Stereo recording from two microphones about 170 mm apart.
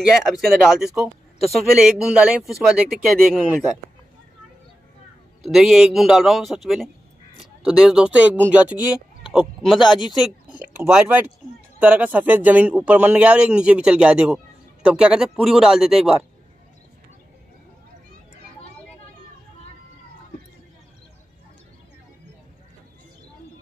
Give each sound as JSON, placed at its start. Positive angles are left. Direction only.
{"t": 0.1, "sound": "a man's voice", "side_deg": 0}
{"t": 5.4, "sound": "a man's voice", "side_deg": 0}
{"t": 9.8, "sound": "speech", "side_deg": 25}
{"t": 10.5, "sound": "a man's voice", "side_deg": -10}